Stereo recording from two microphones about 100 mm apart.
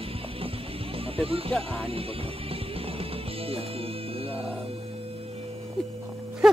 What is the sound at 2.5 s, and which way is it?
Music, 70° right (ahead or behind).